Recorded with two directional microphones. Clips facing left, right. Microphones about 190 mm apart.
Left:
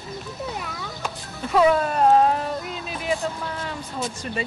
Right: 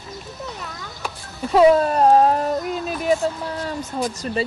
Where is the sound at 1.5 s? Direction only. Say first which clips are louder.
Right 5 dB; 30° right (ahead or behind).